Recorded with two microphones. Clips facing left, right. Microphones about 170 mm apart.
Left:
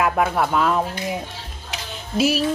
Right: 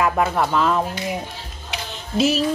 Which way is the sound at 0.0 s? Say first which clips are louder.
Even; 5° left (ahead or behind).